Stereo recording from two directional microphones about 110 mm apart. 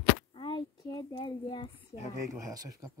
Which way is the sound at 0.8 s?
35° left (ahead or behind).